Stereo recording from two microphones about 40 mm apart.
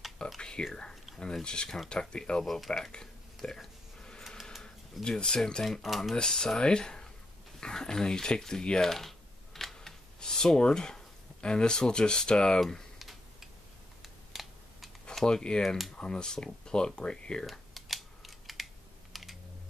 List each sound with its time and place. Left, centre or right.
0.4 s a sound: centre
1.4 s speech: left
3.4 s a sound: centre
4.4 s printer: centre
5.0 s speech: centre
5.7 s speech: centre
6.1 s speech: centre
8.9 s typing: centre
10.2 s speech: centre
14.0 s computer keyboard: centre
15.2 s speech: centre
17.5 s computer keyboard: centre
19.1 s typing: centre